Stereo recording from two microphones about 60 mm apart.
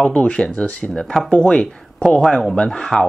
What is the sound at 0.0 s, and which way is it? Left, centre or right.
Speech, centre.